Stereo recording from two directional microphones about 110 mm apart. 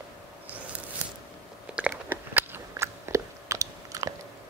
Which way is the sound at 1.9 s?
20° right (ahead or behind).